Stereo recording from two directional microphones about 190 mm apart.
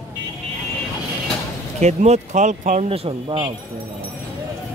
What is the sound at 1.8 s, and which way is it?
Speech, 35° right (ahead or behind).